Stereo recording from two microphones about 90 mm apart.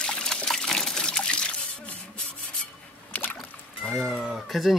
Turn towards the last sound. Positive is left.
turn(degrees=0)  # may be behind; listen again after turning